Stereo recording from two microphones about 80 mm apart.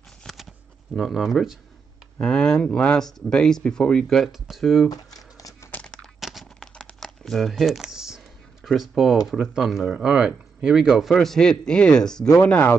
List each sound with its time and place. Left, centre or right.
0.2 s a sound: centre
0.9 s speech: centre
2.1 s speech: centre
4.2 s speech: centre
4.8 s typing: left
6.2 s crack: centre
7.0 s a sound: centre
8.6 s speech: centre
11.1 s speech: centre